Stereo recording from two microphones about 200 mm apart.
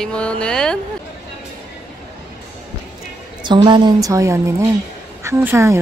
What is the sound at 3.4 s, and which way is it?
A woman's voice, 20° right (ahead or behind).